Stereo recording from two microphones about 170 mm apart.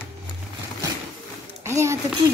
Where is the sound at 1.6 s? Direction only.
15° right (ahead or behind).